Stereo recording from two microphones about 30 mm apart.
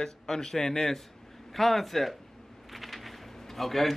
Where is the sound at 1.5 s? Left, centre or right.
Centre.